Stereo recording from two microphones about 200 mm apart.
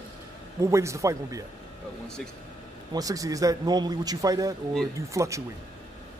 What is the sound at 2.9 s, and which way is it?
A man's voice, 15° right (ahead or behind).